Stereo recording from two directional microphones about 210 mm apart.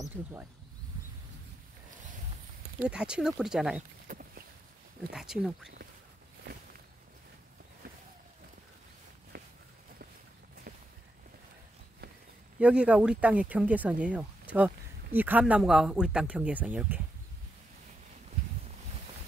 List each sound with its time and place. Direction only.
0.0 s speech: 10° right (ahead or behind)
2.8 s speech: 5° right (ahead or behind)
4.1 s a sound: 40° right (ahead or behind)
5.1 s speech: centre (ahead or behind)
9.3 s walk: 50° right (ahead or behind)
10.7 s walk: 45° right (ahead or behind)
12.5 s speech: 5° right (ahead or behind)